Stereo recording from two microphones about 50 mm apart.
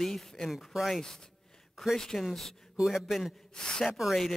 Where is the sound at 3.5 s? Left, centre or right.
Centre.